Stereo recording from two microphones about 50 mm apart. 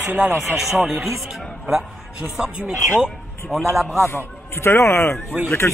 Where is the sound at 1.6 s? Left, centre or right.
Right.